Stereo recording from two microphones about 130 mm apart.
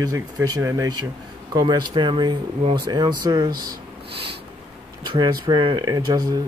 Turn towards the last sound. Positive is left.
turn(degrees=-30)  # may be behind; listen again after turning